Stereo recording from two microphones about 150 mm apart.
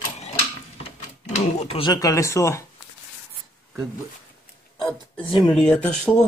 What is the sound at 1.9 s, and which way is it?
Speech, 20° left (ahead or behind).